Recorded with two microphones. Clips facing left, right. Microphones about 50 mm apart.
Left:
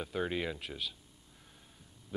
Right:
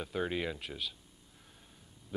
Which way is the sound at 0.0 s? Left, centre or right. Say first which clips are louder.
Even; centre.